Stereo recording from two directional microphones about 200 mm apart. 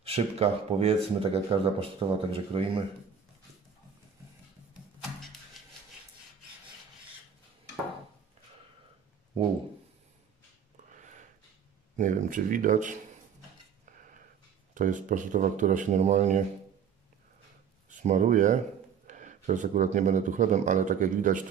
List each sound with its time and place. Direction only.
0.0 s speech: 30° right (ahead or behind)
10.9 s a sound: 40° right (ahead or behind)
12.0 s speech: 40° right (ahead or behind)
14.7 s speech: 40° right (ahead or behind)
17.8 s speech: 40° right (ahead or behind)